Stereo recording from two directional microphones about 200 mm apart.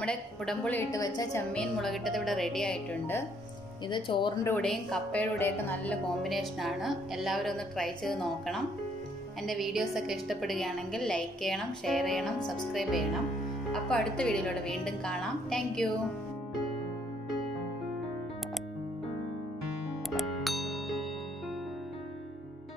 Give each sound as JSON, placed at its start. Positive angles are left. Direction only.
{"t": 0.0, "sound": "a woman's voice", "side_deg": 5}
{"t": 1.5, "sound": "speech", "side_deg": 0}
{"t": 3.9, "sound": "speech", "side_deg": 25}
{"t": 4.5, "sound": "speech", "side_deg": 5}
{"t": 20.1, "sound": "music", "side_deg": 0}